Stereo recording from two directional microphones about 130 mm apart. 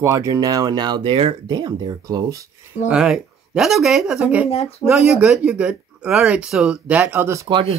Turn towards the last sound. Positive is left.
turn(degrees=-50)  # may be behind; listen again after turning